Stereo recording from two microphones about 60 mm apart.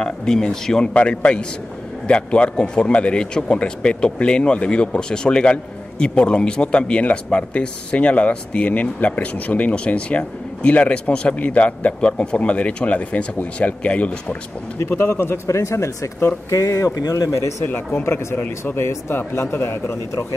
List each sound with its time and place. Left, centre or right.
0.0 s a man's voice: centre
14.8 s a man's voice: left
15.4 s speech: left
16.4 s speech: left
17.6 s a man's voice: left